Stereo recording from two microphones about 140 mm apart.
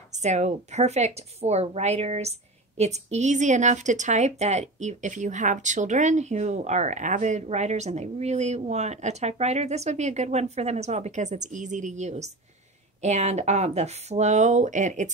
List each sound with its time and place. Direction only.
0.1 s a woman's voice: 55° right (ahead or behind)